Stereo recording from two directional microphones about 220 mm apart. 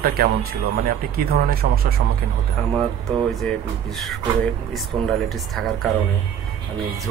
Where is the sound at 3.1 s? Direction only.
5° left (ahead or behind).